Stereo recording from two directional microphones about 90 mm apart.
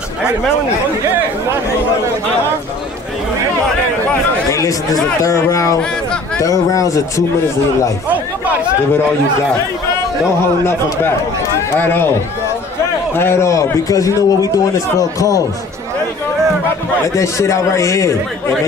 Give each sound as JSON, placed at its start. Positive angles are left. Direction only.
{"t": 4.5, "sound": "a man's voice", "side_deg": 40}
{"t": 11.7, "sound": "speech", "side_deg": 25}
{"t": 13.1, "sound": "a man's voice", "side_deg": 25}
{"t": 17.1, "sound": "a man's voice", "side_deg": 35}